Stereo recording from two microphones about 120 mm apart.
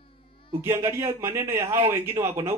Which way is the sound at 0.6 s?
20° right (ahead or behind).